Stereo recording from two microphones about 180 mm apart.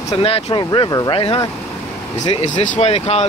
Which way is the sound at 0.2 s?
30° left (ahead or behind).